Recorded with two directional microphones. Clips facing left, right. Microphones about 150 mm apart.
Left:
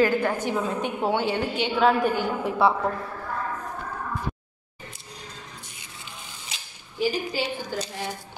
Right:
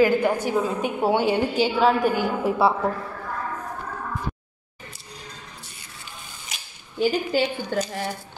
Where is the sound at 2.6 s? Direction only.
5° right (ahead or behind).